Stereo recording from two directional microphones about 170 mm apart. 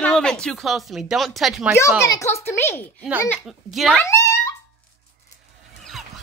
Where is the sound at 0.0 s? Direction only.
5° left (ahead or behind).